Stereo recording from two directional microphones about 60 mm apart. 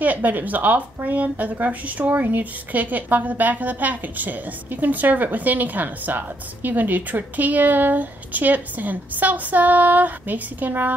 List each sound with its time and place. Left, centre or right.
0.0 s speech: right